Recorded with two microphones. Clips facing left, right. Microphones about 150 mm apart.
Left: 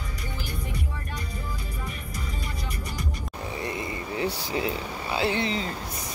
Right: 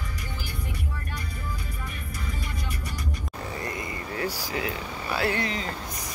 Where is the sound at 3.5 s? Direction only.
20° left (ahead or behind).